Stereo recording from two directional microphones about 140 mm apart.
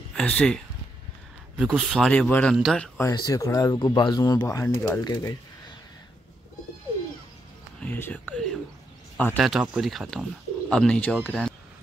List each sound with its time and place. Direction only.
0.1 s speech: 5° left (ahead or behind)
1.6 s speech: centre (ahead or behind)
3.0 s speech: 25° left (ahead or behind)
5.0 s speech: 30° left (ahead or behind)
7.8 s whispering: 10° left (ahead or behind)
9.4 s speech: 5° right (ahead or behind)